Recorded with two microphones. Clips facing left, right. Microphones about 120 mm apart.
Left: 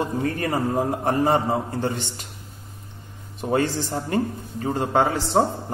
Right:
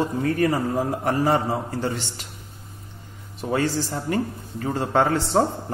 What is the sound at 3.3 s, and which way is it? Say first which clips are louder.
A man's voice: left 1 dB; 20° left (ahead or behind).